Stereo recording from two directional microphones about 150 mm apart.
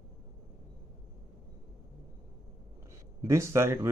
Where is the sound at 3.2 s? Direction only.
20° right (ahead or behind).